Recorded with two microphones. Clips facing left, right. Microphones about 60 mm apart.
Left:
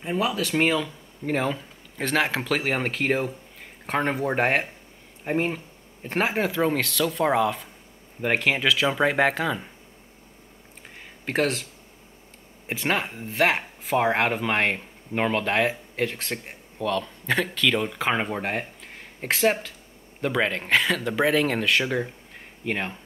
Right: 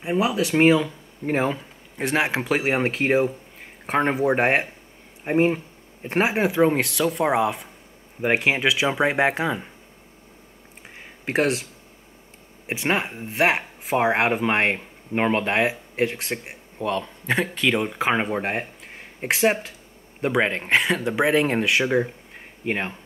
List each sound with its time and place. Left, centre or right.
0.0 s speech: centre
11.2 s speech: centre
12.6 s speech: right